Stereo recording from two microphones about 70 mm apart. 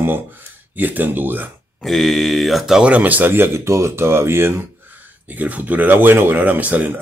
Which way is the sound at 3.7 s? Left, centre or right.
Right.